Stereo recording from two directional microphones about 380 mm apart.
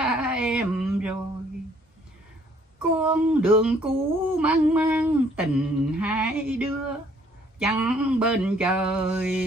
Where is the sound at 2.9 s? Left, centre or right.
Centre.